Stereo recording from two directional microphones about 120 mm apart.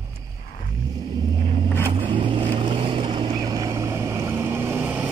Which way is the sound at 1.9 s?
45° right (ahead or behind).